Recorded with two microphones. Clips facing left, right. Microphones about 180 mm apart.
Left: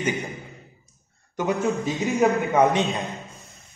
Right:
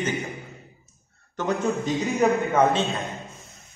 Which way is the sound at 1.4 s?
10° left (ahead or behind).